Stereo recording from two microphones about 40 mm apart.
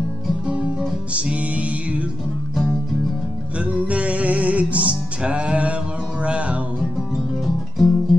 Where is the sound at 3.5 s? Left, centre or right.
Right.